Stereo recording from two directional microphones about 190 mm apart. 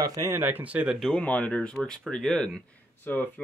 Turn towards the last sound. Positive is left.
turn(degrees=10)  # may be behind; listen again after turning